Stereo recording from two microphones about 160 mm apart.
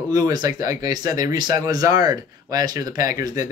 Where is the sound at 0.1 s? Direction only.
25° right (ahead or behind).